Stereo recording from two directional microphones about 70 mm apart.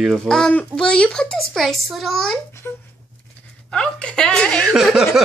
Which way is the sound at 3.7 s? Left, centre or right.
Centre.